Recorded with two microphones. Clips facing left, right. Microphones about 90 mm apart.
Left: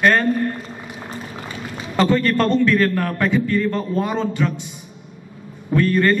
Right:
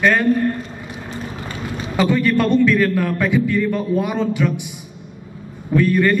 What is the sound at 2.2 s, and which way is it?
A man's voice, 10° right (ahead or behind).